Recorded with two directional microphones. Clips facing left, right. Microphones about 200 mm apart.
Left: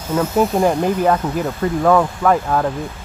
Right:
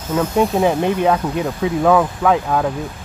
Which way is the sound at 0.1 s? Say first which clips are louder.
Even; 5° left (ahead or behind).